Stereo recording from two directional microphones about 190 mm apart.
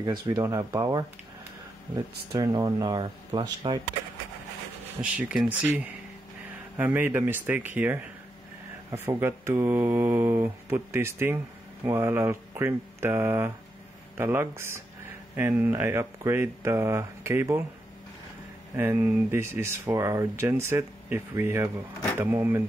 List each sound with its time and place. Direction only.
0.0 s speech: 25° right (ahead or behind)
2.3 s speech: 20° right (ahead or behind)
5.0 s speech: 5° right (ahead or behind)
18.8 s speech: 10° right (ahead or behind)